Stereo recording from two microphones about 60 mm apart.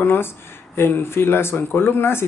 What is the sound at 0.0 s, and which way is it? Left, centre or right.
Speech, left.